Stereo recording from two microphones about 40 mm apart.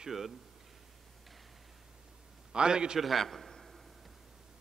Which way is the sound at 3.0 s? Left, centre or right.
Centre.